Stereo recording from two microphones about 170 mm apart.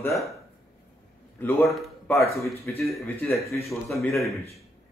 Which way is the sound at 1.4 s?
10° left (ahead or behind).